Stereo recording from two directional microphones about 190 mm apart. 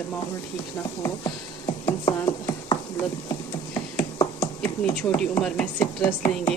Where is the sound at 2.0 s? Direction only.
20° left (ahead or behind).